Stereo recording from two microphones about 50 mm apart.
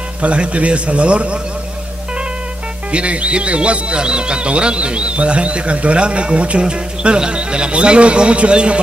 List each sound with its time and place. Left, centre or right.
0.2 s speech: right
2.9 s speech: right